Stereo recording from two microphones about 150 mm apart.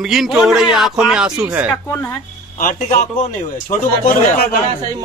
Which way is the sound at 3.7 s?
80° left.